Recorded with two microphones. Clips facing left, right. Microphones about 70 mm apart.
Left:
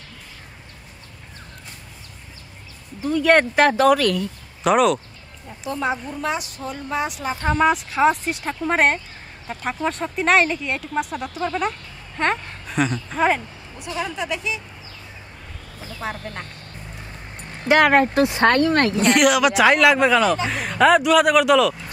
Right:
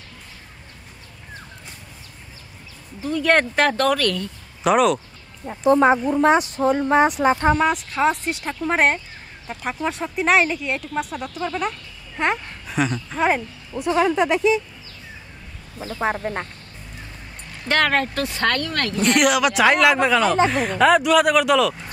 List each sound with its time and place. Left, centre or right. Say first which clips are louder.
3.0 s speech: left 2 dB; centre
5.5 s speech: right 9 dB; right
7.5 s speech: left 2 dB; centre
13.9 s speech: right 8 dB; right
16.0 s speech: right 7 dB; right
17.6 s speech: left 5 dB; centre
18.9 s speech: right 3 dB; centre